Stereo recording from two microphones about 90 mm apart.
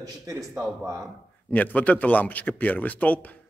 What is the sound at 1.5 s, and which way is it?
Speech, 15° left (ahead or behind).